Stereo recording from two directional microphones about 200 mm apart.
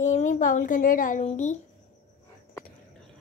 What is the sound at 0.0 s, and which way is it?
A woman's voice, 40° left (ahead or behind).